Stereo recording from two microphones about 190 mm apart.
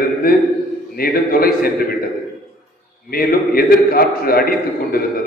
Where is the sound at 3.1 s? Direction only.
50° left (ahead or behind).